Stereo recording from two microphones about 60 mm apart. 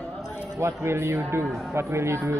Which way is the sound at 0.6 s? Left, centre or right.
Right.